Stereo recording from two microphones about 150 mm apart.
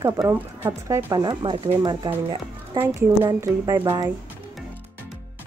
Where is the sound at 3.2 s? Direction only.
20° right (ahead or behind).